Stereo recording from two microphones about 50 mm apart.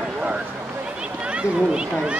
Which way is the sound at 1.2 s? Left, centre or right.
Centre.